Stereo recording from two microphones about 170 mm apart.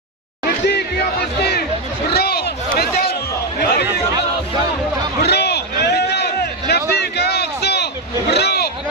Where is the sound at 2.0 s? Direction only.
70° left (ahead or behind).